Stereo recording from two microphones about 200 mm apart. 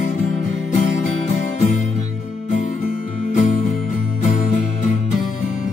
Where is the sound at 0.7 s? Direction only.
40° left (ahead or behind).